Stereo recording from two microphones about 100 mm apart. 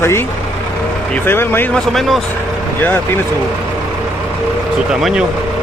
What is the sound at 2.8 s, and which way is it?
Speech, 25° left (ahead or behind).